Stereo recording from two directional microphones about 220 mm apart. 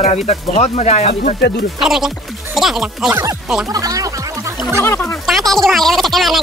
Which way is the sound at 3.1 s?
15° right (ahead or behind).